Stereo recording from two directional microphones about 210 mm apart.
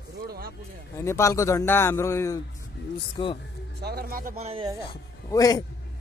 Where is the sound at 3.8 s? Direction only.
50° right (ahead or behind); by 4.8 s 20° right (ahead or behind).